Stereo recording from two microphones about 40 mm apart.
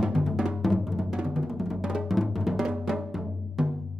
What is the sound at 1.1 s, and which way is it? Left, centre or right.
Music, centre.